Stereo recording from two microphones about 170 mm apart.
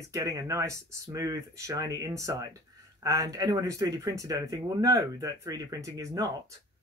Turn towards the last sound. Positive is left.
turn(degrees=-20)  # may be behind; listen again after turning